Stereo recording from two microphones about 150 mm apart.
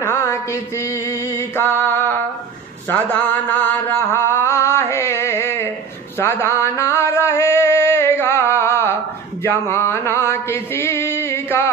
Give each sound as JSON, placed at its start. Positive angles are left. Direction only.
{"t": 0.0, "sound": "mantra", "side_deg": 20}